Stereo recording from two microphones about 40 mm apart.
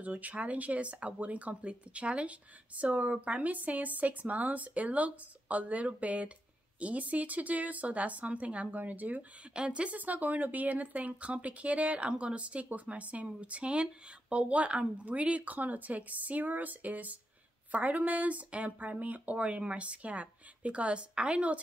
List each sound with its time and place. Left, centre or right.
0.0 s speech: right
9.5 s speech: right
9.9 s speech: right
19.3 s speech: right